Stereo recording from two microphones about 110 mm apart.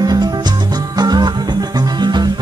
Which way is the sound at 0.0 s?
35° right (ahead or behind).